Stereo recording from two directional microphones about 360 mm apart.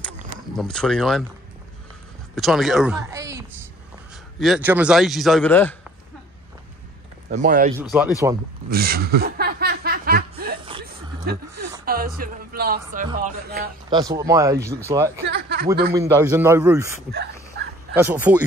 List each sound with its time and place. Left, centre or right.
0.6 s a man's voice: centre
2.3 s a man's voice: centre
7.2 s speech: right
7.8 s a man's voice: centre
8.6 s snicker: right
11.3 s speech: right
13.8 s speech: centre
15.2 s speech: right
15.9 s speech: centre
17.1 s a sound: right
17.9 s a man's voice: centre